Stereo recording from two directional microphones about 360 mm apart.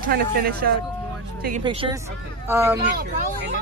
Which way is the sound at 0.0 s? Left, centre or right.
Right.